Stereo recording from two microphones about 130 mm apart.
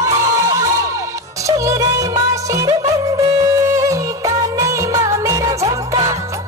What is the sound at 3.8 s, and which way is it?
Music, 25° right (ahead or behind).